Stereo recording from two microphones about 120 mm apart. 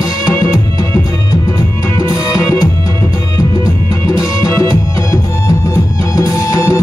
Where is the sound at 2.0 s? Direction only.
30° left (ahead or behind).